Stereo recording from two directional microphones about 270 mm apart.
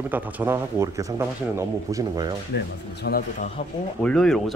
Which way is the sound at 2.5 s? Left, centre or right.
Left.